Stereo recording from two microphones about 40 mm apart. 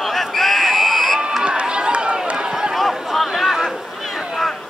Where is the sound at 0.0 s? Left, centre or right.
Centre.